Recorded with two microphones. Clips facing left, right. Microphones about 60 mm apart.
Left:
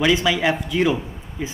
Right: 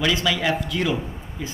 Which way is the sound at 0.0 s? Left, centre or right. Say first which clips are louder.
Left 4 dB; centre.